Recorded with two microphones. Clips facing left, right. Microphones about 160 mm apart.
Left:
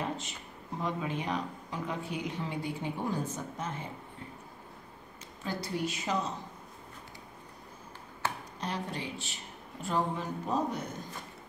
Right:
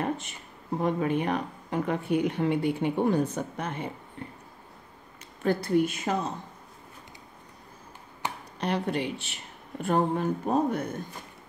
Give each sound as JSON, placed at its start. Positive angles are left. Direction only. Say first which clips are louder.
{"t": 0.0, "sound": "speech", "louder": "right 5 dB", "side_deg": -55}
{"t": 5.4, "sound": "speech", "louder": "right 10 dB", "side_deg": -55}
{"t": 8.2, "sound": "computer keyboard", "louder": "right 1 dB", "side_deg": -15}
{"t": 8.5, "sound": "speech", "louder": "right 8 dB", "side_deg": -65}